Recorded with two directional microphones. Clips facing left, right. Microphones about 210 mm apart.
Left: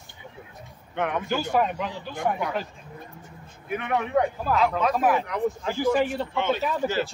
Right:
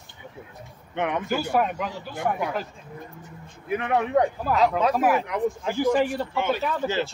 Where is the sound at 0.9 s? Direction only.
15° right (ahead or behind).